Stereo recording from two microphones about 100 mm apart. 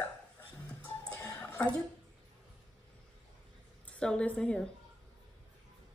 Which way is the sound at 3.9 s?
10° left (ahead or behind).